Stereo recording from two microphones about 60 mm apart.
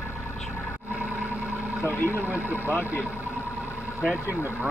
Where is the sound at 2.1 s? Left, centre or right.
Right.